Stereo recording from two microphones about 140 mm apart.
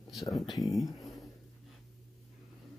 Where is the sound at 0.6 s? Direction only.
Centre (ahead or behind).